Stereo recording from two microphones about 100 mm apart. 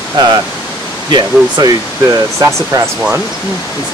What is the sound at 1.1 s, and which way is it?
Speech, 45° right (ahead or behind).